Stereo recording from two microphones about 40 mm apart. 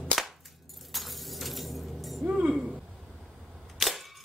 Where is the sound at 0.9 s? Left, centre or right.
Centre.